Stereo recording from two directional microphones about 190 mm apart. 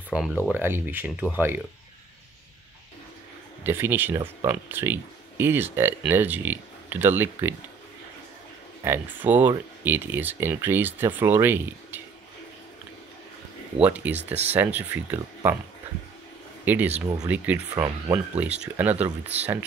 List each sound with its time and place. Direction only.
0.1 s speech: 5° right (ahead or behind)
3.6 s speech: 10° right (ahead or behind)
8.8 s speech: 10° right (ahead or behind)
13.7 s speech: 10° right (ahead or behind)
14.1 s speech: 35° right (ahead or behind)
14.5 s speech: 10° right (ahead or behind)
16.6 s speech: 10° right (ahead or behind)
17.0 s speech: 20° right (ahead or behind)
17.3 s speech: 10° right (ahead or behind)